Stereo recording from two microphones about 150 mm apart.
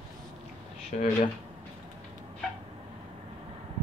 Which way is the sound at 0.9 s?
60° left (ahead or behind).